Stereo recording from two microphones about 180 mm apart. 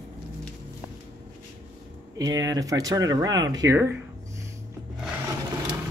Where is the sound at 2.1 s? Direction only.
20° right (ahead or behind).